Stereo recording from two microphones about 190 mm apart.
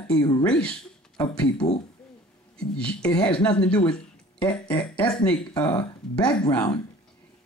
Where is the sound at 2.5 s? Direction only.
5° left (ahead or behind).